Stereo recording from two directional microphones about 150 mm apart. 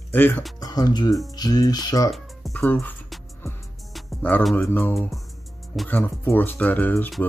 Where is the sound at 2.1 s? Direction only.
Centre (ahead or behind).